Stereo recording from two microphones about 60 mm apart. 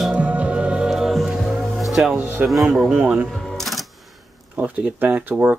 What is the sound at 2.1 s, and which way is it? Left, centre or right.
Speech, right.